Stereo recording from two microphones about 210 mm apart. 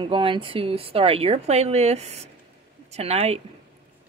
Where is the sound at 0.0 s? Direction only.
25° right (ahead or behind).